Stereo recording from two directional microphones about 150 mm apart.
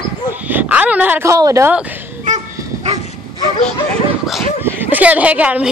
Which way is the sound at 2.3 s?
55° right (ahead or behind).